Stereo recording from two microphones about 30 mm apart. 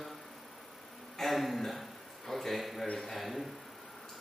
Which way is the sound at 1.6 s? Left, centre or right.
Centre.